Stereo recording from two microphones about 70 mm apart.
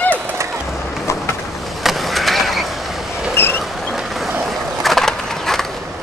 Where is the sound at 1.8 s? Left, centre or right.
Centre.